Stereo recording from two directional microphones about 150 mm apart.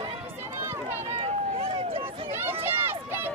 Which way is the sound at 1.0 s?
45° right (ahead or behind).